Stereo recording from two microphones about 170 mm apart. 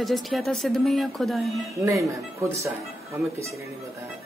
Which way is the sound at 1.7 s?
15° right (ahead or behind).